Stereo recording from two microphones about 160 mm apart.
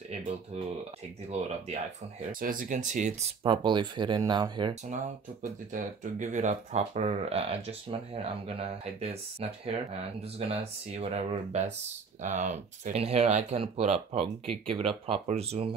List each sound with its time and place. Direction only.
1.3 s speech: 45° right (ahead or behind)
2.4 s speech: 60° right (ahead or behind)
3.4 s speech: 30° right (ahead or behind)
5.4 s speech: 55° right (ahead or behind)